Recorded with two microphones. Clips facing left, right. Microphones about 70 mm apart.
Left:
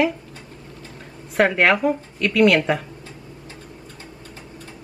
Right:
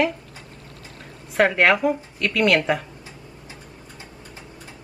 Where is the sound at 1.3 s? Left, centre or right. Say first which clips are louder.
Even; centre.